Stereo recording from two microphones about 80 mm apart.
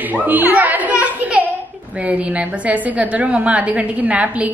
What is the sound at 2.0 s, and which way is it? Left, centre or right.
A woman's voice, centre.